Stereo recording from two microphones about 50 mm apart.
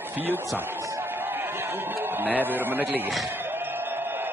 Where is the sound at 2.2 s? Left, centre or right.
Right.